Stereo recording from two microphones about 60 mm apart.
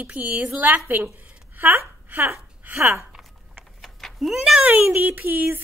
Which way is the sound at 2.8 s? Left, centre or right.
Right.